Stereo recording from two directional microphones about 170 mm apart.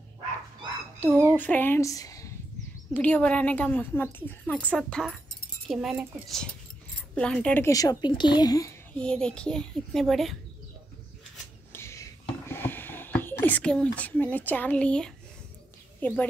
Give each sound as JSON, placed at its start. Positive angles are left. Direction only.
{"t": 1.3, "sound": "speech", "side_deg": 10}
{"t": 2.9, "sound": "a woman's voice", "side_deg": 10}
{"t": 8.9, "sound": "a child's voice", "side_deg": 5}
{"t": 11.7, "sound": "a sound", "side_deg": 15}
{"t": 16.0, "sound": "a woman's voice", "side_deg": 10}